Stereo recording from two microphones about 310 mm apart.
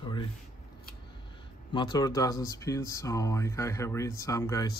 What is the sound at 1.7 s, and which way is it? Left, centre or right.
Speech, centre.